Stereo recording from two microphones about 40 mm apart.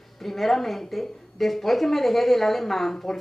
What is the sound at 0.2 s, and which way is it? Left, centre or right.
A woman's voice, centre.